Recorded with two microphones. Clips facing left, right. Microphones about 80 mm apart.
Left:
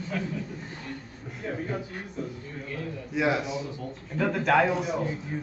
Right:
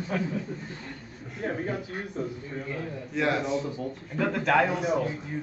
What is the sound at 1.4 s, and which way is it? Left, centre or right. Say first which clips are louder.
Speech: right 2 dB; right.